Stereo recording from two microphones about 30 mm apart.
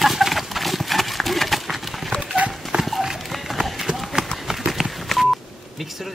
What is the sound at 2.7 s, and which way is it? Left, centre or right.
Clip-clop, right.